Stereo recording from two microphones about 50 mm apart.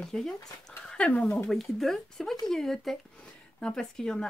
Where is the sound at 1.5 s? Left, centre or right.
Centre.